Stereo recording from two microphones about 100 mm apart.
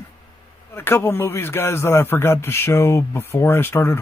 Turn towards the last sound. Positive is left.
turn(degrees=25)  # may be behind; listen again after turning